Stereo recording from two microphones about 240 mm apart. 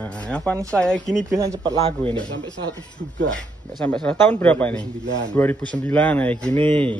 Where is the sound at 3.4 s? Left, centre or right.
Centre.